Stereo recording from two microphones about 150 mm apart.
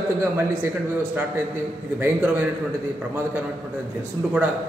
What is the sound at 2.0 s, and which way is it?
Speech, 10° right (ahead or behind).